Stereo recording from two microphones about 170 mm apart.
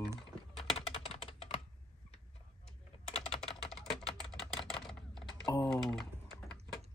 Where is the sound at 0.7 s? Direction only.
35° left (ahead or behind).